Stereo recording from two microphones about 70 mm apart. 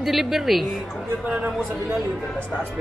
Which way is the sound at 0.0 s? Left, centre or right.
Centre.